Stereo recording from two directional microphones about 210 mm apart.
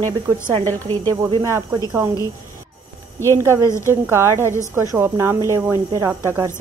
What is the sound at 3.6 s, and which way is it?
Speech, 15° left (ahead or behind).